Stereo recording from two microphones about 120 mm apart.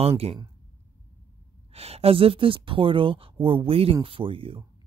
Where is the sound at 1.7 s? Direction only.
55° right (ahead or behind).